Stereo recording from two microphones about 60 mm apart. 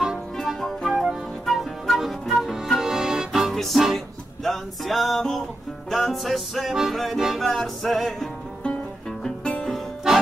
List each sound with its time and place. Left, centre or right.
0.4 s music: centre
2.8 s accordion: centre
3.5 s music: centre
9.2 s music: centre